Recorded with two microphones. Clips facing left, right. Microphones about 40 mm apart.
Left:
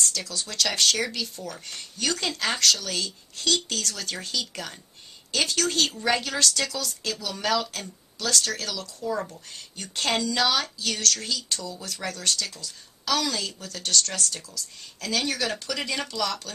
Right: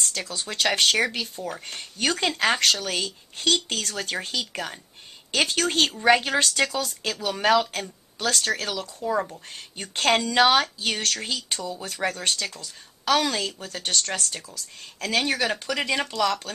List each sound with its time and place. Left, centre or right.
0.0 s a woman's voice: right
9.2 s speech: centre
9.8 s a woman's voice: right